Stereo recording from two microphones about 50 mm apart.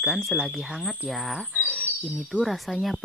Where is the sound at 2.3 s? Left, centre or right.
Right.